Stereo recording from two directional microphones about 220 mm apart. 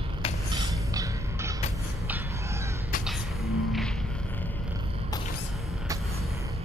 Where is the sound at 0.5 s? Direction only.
20° right (ahead or behind).